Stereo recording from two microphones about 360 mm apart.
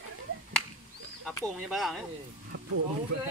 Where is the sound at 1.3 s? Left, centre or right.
Centre.